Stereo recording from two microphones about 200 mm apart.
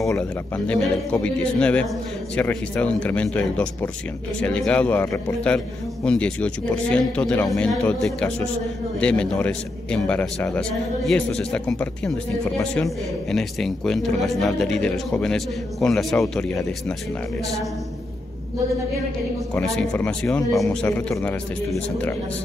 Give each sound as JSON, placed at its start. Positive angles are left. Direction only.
{"t": 0.7, "sound": "speech", "side_deg": 5}
{"t": 13.3, "sound": "speech", "side_deg": 0}
{"t": 19.5, "sound": "speech", "side_deg": 5}